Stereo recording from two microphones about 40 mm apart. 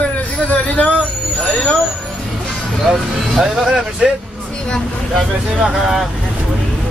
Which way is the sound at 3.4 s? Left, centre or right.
Centre.